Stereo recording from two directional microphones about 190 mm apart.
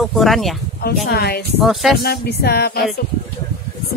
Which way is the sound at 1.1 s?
55° left (ahead or behind).